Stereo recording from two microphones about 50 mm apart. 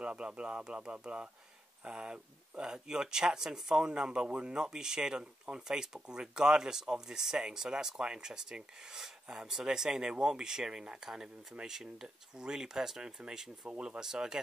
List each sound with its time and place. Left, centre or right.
0.0 s speech: right